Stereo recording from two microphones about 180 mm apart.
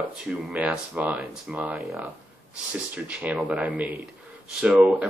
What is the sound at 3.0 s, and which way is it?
Speech, 5° right (ahead or behind).